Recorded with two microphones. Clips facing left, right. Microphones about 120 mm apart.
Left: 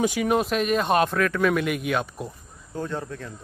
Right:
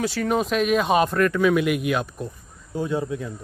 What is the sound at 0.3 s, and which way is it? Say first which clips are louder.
Speech: right 4 dB; centre (ahead or behind).